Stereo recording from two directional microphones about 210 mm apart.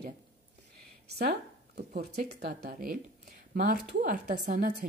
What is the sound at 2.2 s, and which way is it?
A woman's voice, 50° right (ahead or behind).